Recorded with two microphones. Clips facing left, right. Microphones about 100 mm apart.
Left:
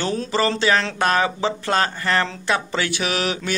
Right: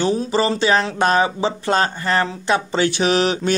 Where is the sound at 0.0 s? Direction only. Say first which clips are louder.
Right 3 dB; 20° right (ahead or behind).